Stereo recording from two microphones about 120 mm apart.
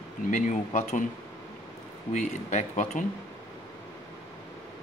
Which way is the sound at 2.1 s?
90° left.